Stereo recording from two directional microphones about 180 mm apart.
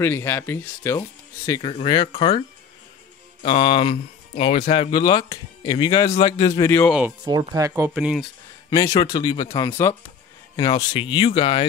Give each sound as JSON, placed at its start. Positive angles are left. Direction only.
{"t": 0.0, "sound": "speech", "side_deg": 15}
{"t": 3.4, "sound": "speech", "side_deg": 30}
{"t": 4.9, "sound": "speech", "side_deg": 25}
{"t": 7.2, "sound": "speech", "side_deg": -20}
{"t": 7.9, "sound": "speech", "side_deg": -5}
{"t": 8.6, "sound": "speech", "side_deg": 20}